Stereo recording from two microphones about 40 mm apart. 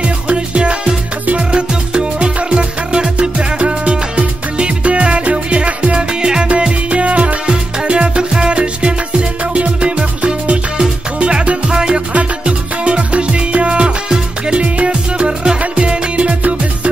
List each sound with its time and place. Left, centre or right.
0.0 s music: right
7.4 s music: right
12.1 s music: right